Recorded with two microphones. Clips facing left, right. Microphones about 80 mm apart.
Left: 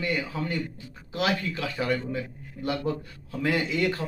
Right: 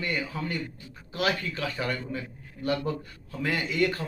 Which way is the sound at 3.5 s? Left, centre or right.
Centre.